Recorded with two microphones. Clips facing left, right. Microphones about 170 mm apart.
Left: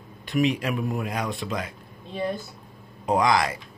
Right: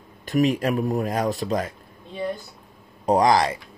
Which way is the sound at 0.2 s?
45° right (ahead or behind).